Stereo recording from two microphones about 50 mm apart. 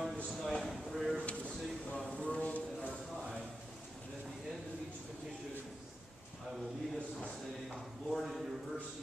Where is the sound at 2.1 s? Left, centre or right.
Left.